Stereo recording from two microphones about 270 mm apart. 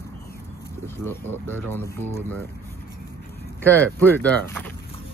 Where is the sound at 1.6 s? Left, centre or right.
Centre.